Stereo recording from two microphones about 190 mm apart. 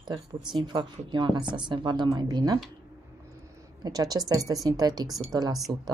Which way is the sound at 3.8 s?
20° right (ahead or behind).